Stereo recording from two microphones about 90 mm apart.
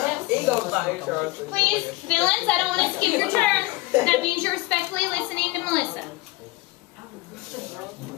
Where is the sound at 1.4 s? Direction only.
10° left (ahead or behind).